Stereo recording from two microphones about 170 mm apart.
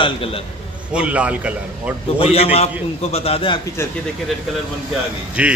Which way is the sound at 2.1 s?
35° left (ahead or behind).